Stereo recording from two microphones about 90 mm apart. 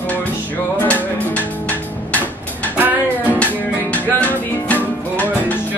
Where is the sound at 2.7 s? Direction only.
20° right (ahead or behind).